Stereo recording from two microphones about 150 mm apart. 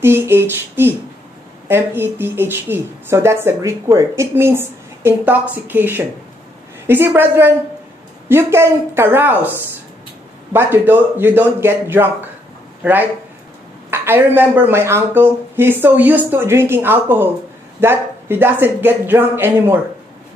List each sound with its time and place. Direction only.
0.0 s speech: 15° right (ahead or behind)
10.5 s speech: 15° right (ahead or behind)